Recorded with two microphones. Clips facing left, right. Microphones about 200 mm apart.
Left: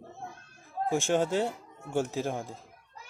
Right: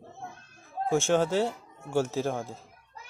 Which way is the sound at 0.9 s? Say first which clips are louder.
Right 2 dB; 15° left (ahead or behind).